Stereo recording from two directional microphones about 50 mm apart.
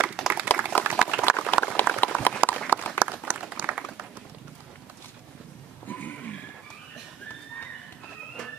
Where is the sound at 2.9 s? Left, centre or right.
Right.